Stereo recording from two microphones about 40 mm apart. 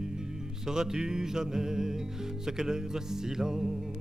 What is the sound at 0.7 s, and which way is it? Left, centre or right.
Music, centre.